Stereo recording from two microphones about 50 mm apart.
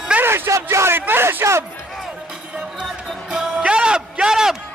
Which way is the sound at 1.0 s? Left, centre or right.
Right.